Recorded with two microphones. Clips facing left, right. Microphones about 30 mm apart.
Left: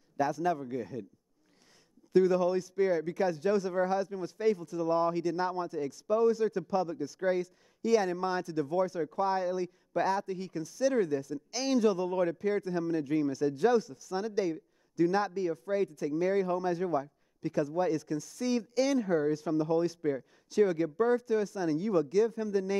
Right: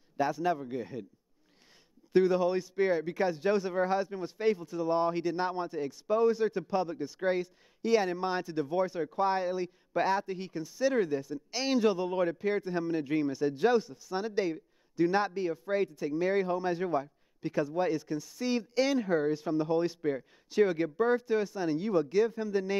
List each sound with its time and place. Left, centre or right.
0.2 s speech: right
2.1 s speech: right